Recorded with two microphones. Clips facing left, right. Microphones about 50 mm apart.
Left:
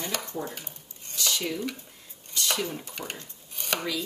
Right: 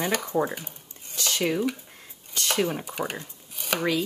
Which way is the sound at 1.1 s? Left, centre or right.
Right.